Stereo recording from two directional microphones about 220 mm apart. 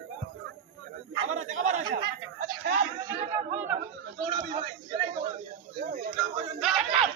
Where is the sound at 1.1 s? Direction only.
35° right (ahead or behind).